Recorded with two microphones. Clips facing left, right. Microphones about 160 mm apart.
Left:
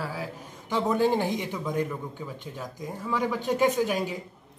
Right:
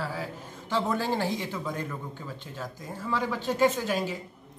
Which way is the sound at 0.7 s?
15° left (ahead or behind).